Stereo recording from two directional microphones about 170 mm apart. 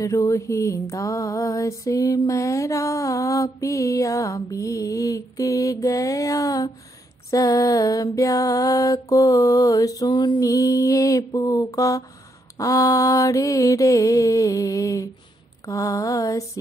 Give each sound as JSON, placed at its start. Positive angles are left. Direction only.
{"t": 0.0, "sound": "mantra", "side_deg": 20}